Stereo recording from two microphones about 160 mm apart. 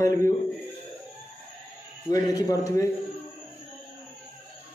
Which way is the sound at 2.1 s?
25° left (ahead or behind).